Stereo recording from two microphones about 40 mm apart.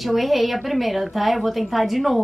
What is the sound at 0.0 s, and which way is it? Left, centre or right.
A woman's voice, centre.